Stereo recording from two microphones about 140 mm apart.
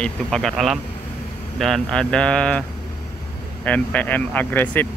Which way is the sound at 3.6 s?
10° left (ahead or behind).